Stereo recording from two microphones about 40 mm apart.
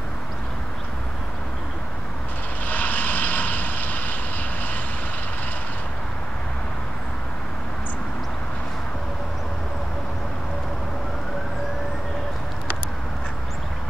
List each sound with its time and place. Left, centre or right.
2.6 s vehicle: left